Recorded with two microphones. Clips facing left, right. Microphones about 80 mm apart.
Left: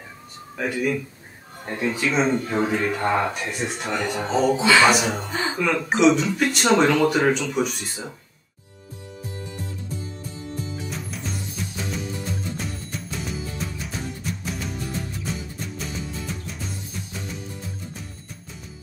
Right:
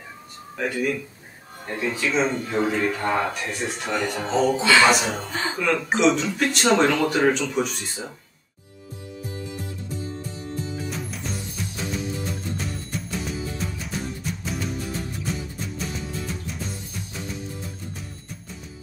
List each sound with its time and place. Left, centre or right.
0.6 s speech: centre
1.8 s speech: centre
3.8 s speech: centre
10.9 s music: centre